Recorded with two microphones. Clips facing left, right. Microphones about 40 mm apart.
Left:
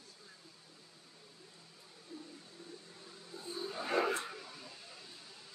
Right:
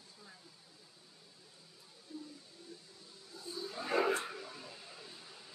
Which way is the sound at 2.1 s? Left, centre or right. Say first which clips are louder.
Right 2 dB; left.